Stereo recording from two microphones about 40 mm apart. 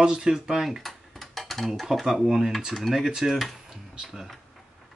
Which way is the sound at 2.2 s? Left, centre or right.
Centre.